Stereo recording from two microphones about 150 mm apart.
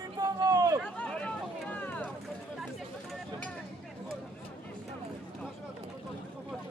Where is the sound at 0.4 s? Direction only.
25° right (ahead or behind).